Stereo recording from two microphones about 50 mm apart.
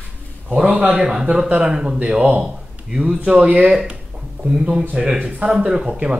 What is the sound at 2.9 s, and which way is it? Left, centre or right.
Speech, centre.